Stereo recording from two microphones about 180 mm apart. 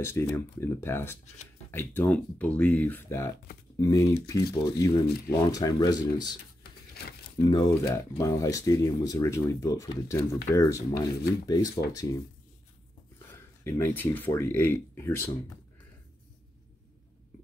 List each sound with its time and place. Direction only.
0.0 s speech: 15° left (ahead or behind)
7.4 s speech: 20° left (ahead or behind)
13.3 s speech: 15° left (ahead or behind)